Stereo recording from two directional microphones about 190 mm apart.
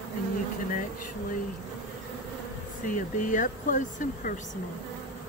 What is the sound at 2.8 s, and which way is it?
Speech, 45° left (ahead or behind).